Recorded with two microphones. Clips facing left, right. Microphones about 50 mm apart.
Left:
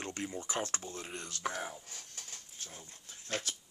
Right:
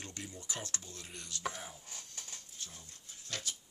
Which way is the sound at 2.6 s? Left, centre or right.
Left.